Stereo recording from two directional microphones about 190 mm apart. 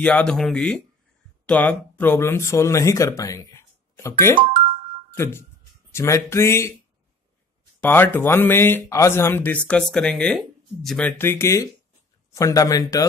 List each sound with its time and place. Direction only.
0.0 s speech: 5° left (ahead or behind)
5.1 s speech: 15° left (ahead or behind)
7.8 s speech: 10° left (ahead or behind)